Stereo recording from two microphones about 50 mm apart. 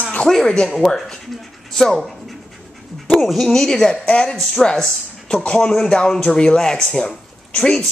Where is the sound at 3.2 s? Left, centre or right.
Centre.